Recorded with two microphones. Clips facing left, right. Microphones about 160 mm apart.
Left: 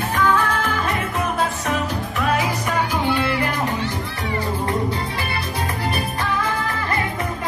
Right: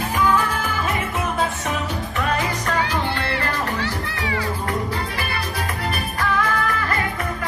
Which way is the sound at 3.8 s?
90° right.